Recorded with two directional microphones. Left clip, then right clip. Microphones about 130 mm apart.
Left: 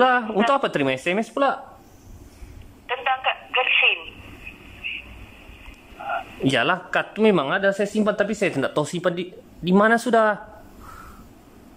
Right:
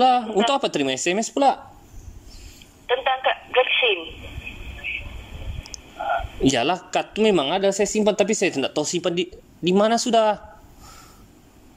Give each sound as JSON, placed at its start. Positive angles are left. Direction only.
{"t": 0.0, "sound": "speech", "side_deg": -25}
{"t": 2.9, "sound": "telephone", "side_deg": 0}
{"t": 4.7, "sound": "a sound", "side_deg": 0}
{"t": 6.4, "sound": "a woman's voice", "side_deg": -25}